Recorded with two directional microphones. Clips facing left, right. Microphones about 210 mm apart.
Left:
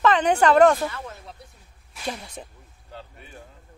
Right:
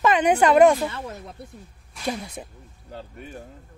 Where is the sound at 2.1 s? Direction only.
10° right (ahead or behind).